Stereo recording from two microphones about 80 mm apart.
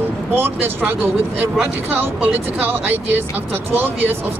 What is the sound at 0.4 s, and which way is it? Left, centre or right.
Speech, right.